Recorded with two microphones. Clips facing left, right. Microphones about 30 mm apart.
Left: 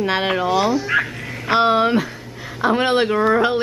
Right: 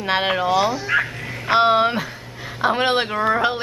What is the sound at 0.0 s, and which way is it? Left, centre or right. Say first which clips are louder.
Speech: left 1 dB; centre.